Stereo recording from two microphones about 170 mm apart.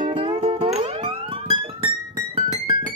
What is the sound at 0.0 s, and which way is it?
Music, 30° right (ahead or behind).